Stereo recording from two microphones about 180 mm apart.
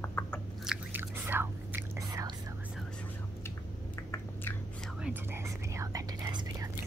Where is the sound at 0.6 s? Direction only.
5° right (ahead or behind).